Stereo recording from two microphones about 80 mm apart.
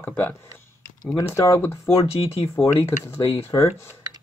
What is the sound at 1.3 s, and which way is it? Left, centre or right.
Speech, left.